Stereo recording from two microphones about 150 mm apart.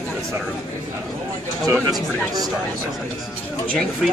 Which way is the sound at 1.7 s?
25° right (ahead or behind).